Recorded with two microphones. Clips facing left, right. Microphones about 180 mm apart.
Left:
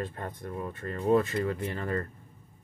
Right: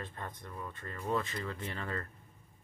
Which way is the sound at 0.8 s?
45° left (ahead or behind).